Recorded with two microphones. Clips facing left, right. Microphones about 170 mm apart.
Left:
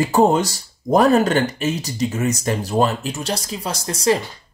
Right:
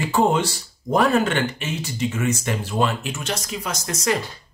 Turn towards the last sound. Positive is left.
turn(degrees=30)  # may be behind; listen again after turning